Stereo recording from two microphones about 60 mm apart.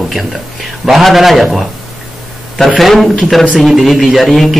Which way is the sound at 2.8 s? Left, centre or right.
Centre.